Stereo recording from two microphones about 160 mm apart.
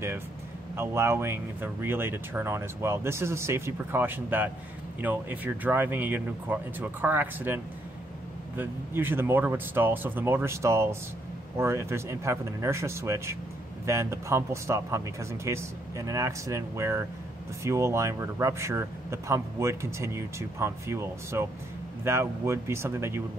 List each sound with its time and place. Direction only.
0.7 s speech: 15° right (ahead or behind)